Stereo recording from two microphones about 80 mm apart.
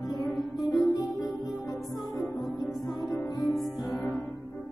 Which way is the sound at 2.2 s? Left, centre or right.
Centre.